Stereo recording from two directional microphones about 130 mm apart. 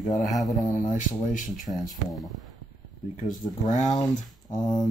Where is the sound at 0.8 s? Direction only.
80° left.